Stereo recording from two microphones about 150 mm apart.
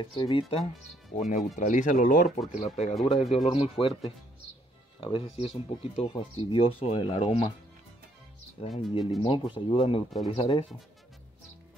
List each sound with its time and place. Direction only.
0.0 s speech: 35° left (ahead or behind)
1.1 s speech: 50° left (ahead or behind)
2.5 s speech: 45° left (ahead or behind)
8.5 s speech: 45° left (ahead or behind)